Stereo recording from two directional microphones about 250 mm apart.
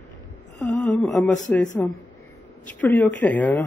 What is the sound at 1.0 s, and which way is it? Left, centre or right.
A man's voice, centre.